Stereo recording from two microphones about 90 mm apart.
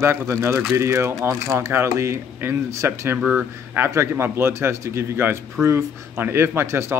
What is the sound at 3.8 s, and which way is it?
Speech, 25° right (ahead or behind).